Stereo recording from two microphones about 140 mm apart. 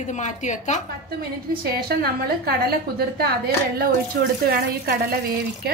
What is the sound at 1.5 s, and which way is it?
A woman's voice, 90° right.